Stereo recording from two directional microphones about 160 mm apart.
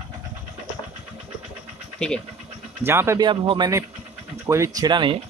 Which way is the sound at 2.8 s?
15° right (ahead or behind).